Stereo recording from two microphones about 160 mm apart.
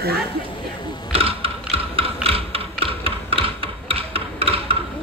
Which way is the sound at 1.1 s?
35° right (ahead or behind).